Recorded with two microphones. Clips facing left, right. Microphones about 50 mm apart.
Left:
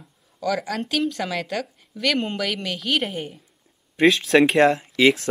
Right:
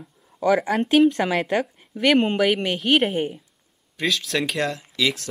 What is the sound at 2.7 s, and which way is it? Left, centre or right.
Speech, centre.